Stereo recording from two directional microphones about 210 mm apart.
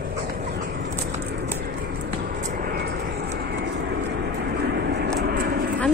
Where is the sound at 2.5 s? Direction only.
45° right (ahead or behind).